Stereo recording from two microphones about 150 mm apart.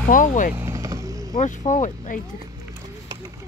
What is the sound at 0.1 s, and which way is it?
Speech, 60° left (ahead or behind).